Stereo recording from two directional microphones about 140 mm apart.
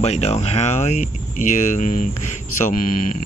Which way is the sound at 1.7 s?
65° left (ahead or behind).